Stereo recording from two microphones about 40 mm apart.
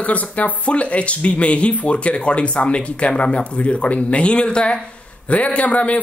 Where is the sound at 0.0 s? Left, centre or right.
Left.